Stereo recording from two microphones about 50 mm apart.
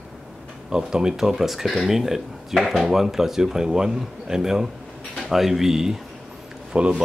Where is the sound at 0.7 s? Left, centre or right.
Centre.